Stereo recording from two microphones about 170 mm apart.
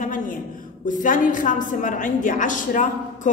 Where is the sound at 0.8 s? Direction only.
50° left (ahead or behind).